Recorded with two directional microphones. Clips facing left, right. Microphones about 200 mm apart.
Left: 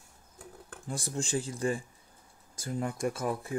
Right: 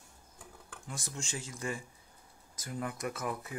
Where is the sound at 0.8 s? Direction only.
35° left (ahead or behind).